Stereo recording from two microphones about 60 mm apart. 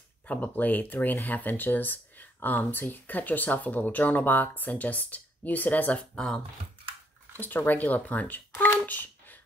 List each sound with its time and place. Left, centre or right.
0.3 s speech: left
6.1 s speech: centre
7.3 s speech: left
8.8 s a sound: left